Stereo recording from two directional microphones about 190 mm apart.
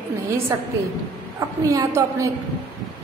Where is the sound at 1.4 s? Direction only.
15° right (ahead or behind).